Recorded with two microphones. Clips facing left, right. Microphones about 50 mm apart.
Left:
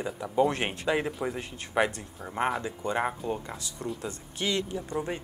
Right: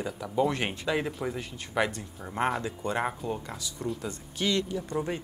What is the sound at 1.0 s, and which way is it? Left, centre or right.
Speech, centre.